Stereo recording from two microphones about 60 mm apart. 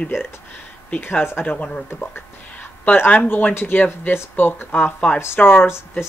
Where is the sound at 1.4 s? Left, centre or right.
Left.